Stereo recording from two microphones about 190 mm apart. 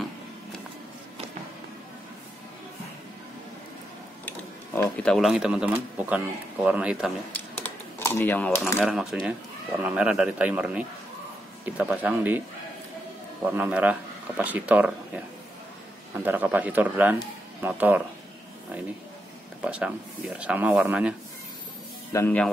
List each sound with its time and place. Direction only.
5.0 s speech: centre (ahead or behind)
7.3 s typing: 10° left (ahead or behind)
8.8 s speech: 5° right (ahead or behind)
19.6 s speech: 5° right (ahead or behind)
22.1 s speech: 10° left (ahead or behind)